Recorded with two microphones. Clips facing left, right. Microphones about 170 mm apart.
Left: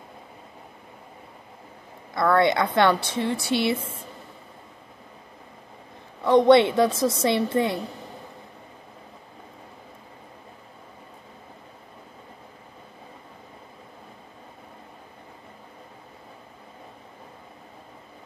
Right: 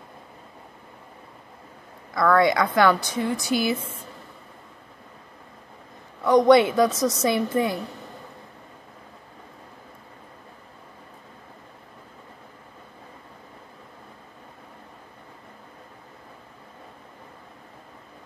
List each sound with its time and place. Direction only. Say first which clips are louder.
2.1 s speech: right 1 dB; 25° left (ahead or behind)
6.2 s speech: even; 30° left (ahead or behind)